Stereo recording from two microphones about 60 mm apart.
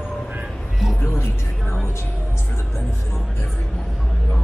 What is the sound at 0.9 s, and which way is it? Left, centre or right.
Music, left.